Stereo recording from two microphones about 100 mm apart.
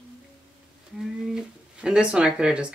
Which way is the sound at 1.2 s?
5° right (ahead or behind).